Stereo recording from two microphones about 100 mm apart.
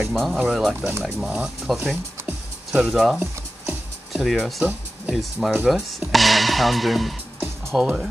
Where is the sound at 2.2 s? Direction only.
20° right (ahead or behind).